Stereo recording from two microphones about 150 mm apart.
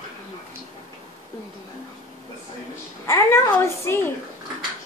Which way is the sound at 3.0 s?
20° left (ahead or behind).